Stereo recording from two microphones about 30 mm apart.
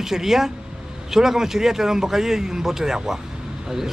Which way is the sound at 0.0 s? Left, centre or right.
Centre.